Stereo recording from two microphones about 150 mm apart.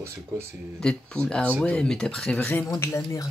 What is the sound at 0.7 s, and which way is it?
Speech, 5° left (ahead or behind).